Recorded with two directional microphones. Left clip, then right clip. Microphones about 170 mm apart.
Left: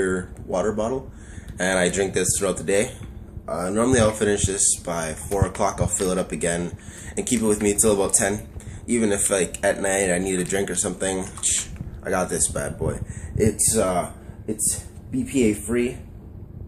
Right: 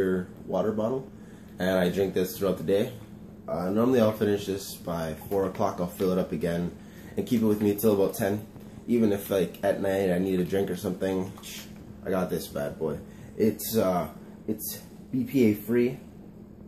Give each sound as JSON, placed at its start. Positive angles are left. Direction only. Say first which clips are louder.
{"t": 0.0, "sound": "speech", "louder": "left 3 dB", "side_deg": 10}
{"t": 15.2, "sound": "speech", "louder": "left 3 dB", "side_deg": 0}